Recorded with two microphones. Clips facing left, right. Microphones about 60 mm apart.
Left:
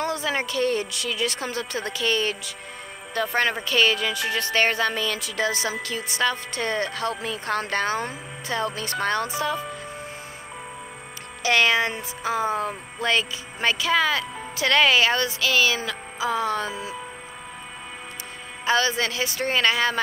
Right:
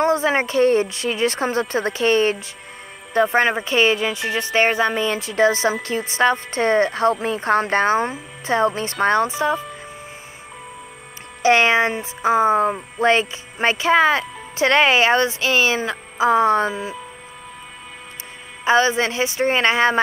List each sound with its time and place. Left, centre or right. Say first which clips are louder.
0.0 s a woman's voice: right 8 dB; right
11.4 s speech: right 5 dB; right
18.6 s speech: right 6 dB; right